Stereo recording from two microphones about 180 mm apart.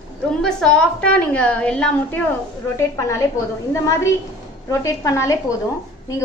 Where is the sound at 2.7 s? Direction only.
15° left (ahead or behind).